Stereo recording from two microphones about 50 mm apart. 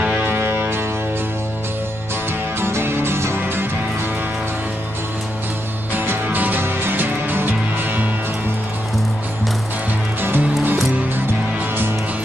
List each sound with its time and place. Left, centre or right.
0.2 s music: right
2.6 s music: right
6.2 s music: right
10.2 s music: right